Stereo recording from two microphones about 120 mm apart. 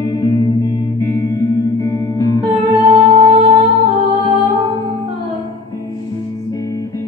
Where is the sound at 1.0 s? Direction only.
30° left (ahead or behind).